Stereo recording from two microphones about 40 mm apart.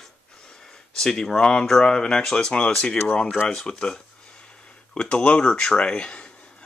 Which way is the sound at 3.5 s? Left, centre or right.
Centre.